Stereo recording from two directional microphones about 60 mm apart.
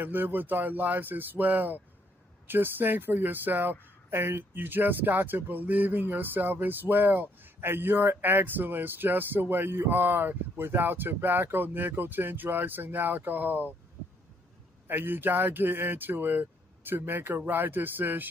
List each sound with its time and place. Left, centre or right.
0.0 s speech: right
14.9 s speech: right